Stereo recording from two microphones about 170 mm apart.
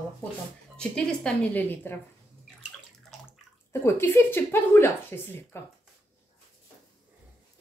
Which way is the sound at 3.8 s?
15° left (ahead or behind).